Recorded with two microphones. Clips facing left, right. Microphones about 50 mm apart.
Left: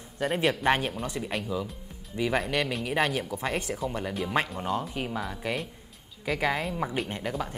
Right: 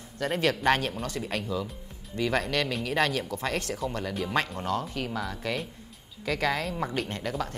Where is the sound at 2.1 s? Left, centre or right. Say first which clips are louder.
Even; centre.